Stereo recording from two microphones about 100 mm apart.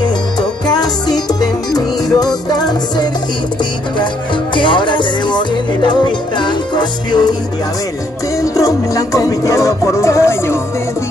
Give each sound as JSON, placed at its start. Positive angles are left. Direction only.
{"t": 0.0, "sound": "music", "side_deg": 45}
{"t": 4.6, "sound": "music", "side_deg": 55}
{"t": 8.4, "sound": "music", "side_deg": 35}